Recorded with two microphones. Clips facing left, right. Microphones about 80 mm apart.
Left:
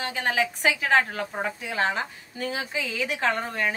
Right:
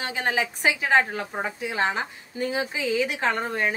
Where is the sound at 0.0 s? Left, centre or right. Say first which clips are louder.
Even; centre.